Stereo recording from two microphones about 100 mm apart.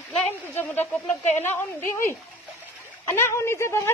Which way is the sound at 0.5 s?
20° left (ahead or behind).